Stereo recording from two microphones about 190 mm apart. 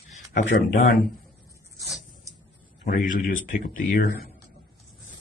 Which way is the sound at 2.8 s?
50° left (ahead or behind).